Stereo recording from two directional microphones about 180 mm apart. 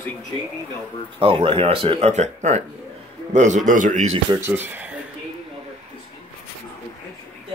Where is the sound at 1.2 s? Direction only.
30° right (ahead or behind).